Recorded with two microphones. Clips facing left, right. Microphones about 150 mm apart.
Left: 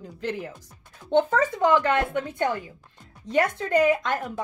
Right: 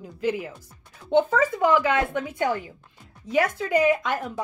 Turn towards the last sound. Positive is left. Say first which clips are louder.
# even
turn(degrees=-5)  # may be behind; listen again after turning